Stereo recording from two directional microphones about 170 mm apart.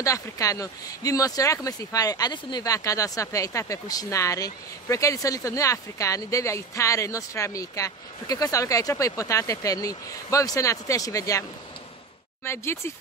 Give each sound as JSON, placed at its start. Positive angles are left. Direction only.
{"t": 0.0, "sound": "speech", "side_deg": 20}
{"t": 12.4, "sound": "speech", "side_deg": 15}